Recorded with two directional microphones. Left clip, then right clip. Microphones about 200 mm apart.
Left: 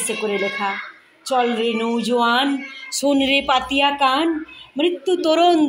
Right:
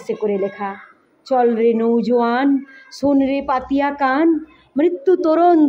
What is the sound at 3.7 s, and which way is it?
A woman's voice, 30° right (ahead or behind).